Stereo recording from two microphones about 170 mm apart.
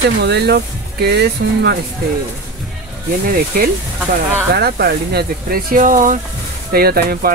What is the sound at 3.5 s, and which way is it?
Speech, 55° right (ahead or behind).